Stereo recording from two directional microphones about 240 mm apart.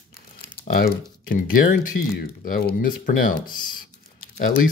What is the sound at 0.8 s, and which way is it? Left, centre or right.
Speech, left.